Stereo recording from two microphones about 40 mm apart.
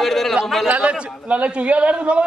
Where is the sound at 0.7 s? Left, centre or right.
Right.